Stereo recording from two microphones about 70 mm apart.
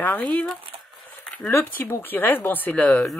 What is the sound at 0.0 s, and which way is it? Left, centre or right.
Speech, left.